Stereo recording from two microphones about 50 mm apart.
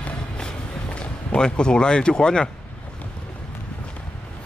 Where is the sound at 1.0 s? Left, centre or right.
Centre.